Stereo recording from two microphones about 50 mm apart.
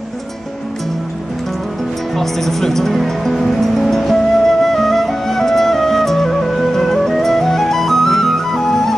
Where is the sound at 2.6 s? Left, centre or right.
Centre.